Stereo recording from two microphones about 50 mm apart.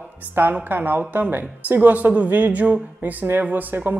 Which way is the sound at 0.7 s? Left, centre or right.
Right.